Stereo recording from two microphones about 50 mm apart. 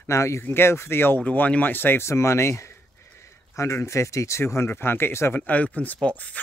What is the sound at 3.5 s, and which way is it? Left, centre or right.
Speech, left.